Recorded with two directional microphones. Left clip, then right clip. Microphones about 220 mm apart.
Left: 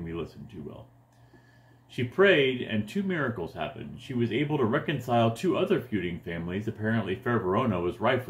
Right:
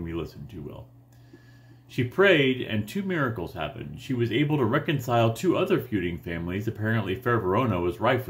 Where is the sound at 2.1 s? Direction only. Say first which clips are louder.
Right 1 dB; 20° right (ahead or behind).